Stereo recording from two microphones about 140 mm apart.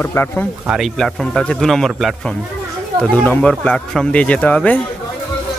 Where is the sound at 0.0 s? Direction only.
15° left (ahead or behind).